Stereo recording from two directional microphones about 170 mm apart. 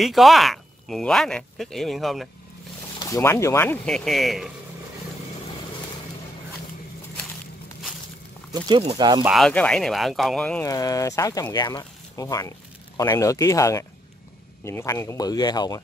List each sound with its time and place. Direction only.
0.0 s speech: centre (ahead or behind)
3.1 s speech: 15° left (ahead or behind); by 4.5 s centre (ahead or behind)
8.6 s speech: 30° right (ahead or behind)
9.2 s speech: centre (ahead or behind)
10.6 s speech: 20° left (ahead or behind)